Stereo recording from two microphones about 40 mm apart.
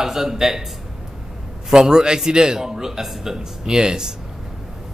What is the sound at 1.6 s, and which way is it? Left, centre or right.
A man's voice, centre.